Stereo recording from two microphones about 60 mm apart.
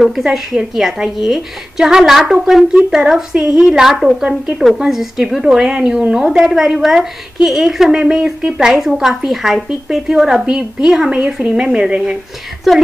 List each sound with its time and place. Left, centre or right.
0.0 s a woman's voice: centre